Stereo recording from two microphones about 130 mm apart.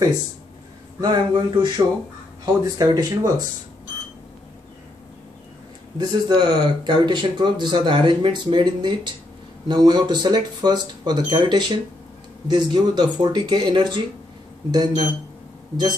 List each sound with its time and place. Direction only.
1.0 s speech: 40° right (ahead or behind)
5.9 s speech: 35° right (ahead or behind)